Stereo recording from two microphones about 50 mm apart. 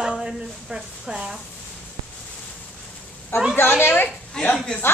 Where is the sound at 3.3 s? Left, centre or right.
Left.